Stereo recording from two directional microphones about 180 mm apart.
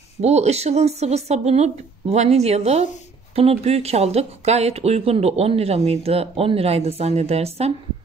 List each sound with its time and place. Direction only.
0.2 s speech: 35° right (ahead or behind)